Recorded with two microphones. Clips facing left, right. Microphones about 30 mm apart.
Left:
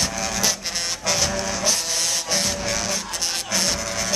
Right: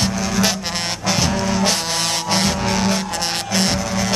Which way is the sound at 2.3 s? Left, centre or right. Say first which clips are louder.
Right 5 dB; right.